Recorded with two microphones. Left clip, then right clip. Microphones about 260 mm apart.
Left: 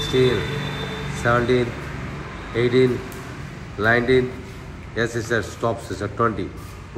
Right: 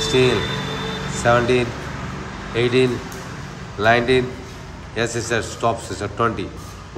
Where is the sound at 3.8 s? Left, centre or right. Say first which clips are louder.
Right 2 dB; centre.